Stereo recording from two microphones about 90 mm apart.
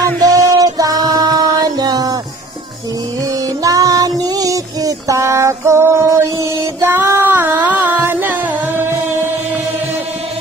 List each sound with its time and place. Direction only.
0.2 s music: 40° right (ahead or behind)
3.6 s a sound: 40° right (ahead or behind)
6.8 s music: 30° right (ahead or behind)